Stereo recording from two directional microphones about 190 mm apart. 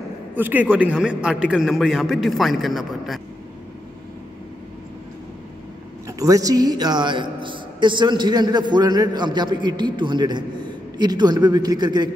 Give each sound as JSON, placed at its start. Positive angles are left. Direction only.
{"t": 0.4, "sound": "a man's voice", "side_deg": -10}
{"t": 6.0, "sound": "a man's voice", "side_deg": -15}